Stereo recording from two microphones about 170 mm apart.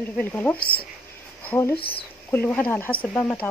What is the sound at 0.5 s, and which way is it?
Speech, 60° left (ahead or behind).